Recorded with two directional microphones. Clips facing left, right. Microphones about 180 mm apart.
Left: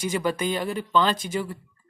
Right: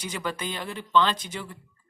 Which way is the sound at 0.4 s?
10° left (ahead or behind).